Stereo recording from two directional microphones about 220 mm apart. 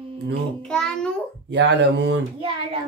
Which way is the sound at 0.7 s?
5° left (ahead or behind).